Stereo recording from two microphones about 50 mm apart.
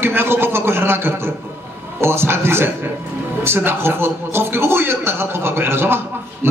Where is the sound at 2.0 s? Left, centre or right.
Right.